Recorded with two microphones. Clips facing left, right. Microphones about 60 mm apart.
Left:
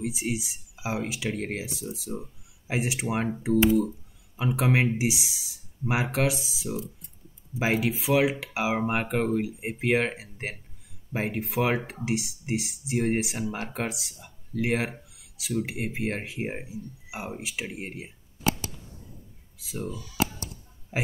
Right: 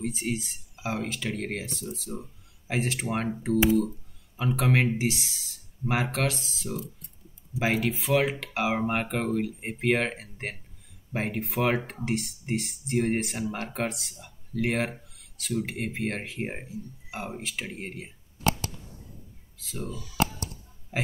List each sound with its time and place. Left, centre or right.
0.0 s speech: centre
4.4 s speech: centre
20.2 s a sound: centre
20.9 s speech: centre